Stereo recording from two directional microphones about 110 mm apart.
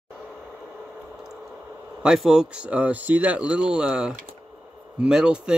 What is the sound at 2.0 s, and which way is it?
Speech, 5° right (ahead or behind).